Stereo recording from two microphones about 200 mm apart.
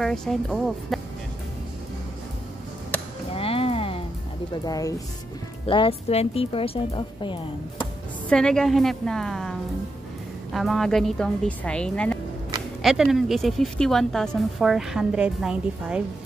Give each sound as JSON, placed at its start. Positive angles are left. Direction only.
{"t": 0.0, "sound": "a woman's voice", "side_deg": 0}
{"t": 3.3, "sound": "music", "side_deg": 30}
{"t": 4.6, "sound": "a woman's voice", "side_deg": 20}
{"t": 8.3, "sound": "a woman's voice", "side_deg": 5}